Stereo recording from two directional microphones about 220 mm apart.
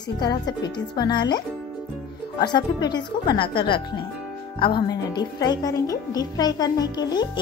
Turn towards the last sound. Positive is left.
turn(degrees=20)  # may be behind; listen again after turning